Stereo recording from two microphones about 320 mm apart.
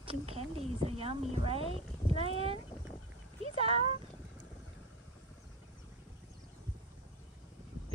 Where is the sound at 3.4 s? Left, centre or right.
Centre.